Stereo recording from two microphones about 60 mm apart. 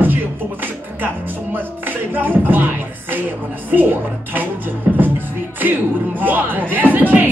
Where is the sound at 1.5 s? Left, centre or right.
Right.